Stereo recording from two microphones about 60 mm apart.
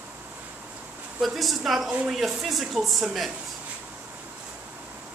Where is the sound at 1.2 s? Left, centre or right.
Centre.